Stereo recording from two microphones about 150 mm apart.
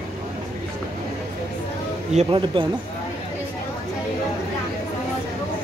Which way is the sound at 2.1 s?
50° right (ahead or behind).